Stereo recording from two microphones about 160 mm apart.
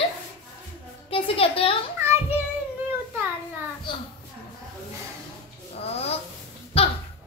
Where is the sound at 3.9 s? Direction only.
30° left (ahead or behind).